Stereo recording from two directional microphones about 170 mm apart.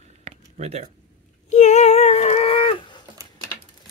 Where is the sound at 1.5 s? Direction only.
45° left (ahead or behind).